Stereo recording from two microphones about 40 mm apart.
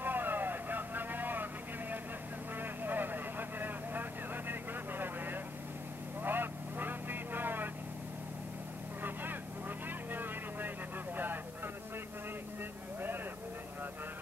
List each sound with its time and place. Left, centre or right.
0.0 s vehicle: right
9.0 s vehicle: right
11.1 s a sound: right